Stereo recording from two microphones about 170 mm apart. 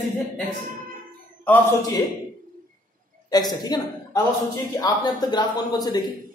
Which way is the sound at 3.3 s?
25° left (ahead or behind).